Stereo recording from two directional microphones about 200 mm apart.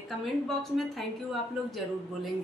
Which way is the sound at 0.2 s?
Centre (ahead or behind).